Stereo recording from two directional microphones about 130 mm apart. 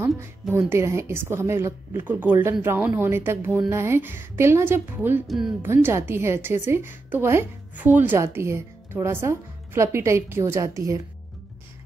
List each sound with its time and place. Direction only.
0.2 s a woman's voice: 20° right (ahead or behind)
5.2 s speech: centre (ahead or behind)
5.6 s a woman's voice: 15° right (ahead or behind)